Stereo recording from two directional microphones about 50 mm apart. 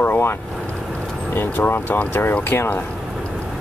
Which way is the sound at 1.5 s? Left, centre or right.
Left.